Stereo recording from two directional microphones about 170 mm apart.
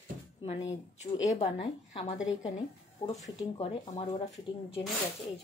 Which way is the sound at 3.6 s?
35° left (ahead or behind).